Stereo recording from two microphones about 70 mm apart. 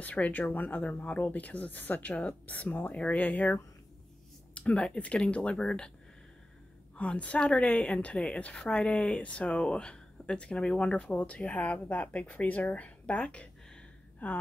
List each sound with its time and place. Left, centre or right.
0.0 s speech: left
4.6 s a woman's voice: centre
7.0 s a woman's voice: centre